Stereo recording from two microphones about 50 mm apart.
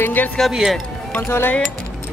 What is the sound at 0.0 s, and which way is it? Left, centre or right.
Speech, left.